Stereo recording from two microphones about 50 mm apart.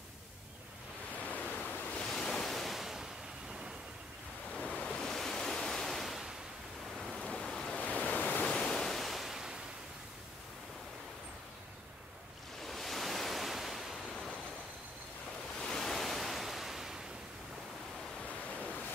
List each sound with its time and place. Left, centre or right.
1.2 s ocean: left
1.7 s waves: left
2.0 s waves: centre
4.5 s waves: left; by 6.3 s centre
7.0 s ocean: centre
7.3 s waves: centre
7.7 s waves: left
8.5 s waves: centre
12.6 s waves: centre
15.6 s waves: centre
18.6 s waves: left